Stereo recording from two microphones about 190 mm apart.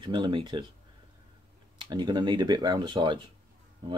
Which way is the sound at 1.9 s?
20° right (ahead or behind).